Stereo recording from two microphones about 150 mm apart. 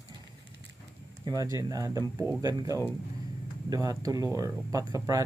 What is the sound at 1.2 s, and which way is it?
Speech, 25° right (ahead or behind).